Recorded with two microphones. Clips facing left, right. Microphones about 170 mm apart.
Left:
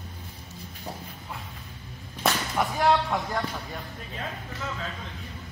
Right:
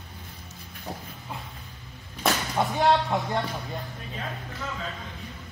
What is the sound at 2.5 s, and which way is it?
Speech, 25° right (ahead or behind).